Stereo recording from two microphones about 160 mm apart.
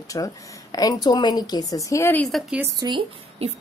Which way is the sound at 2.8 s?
30° right (ahead or behind).